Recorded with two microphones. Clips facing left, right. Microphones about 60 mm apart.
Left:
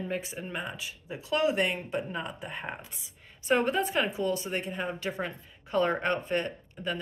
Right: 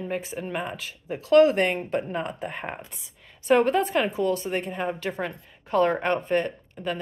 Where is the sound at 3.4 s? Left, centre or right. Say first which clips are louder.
Right 6 dB; right.